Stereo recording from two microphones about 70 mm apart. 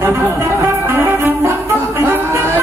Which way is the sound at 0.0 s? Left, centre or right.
Right.